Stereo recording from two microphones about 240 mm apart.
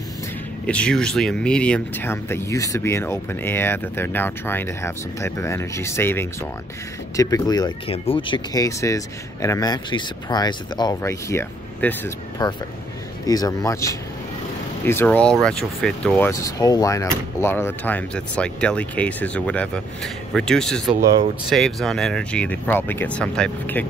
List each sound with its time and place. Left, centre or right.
0.7 s speech: centre